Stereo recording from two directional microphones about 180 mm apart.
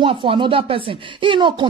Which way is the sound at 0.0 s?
30° right (ahead or behind).